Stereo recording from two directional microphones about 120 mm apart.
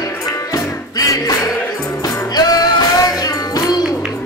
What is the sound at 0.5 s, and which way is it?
Music, 30° left (ahead or behind).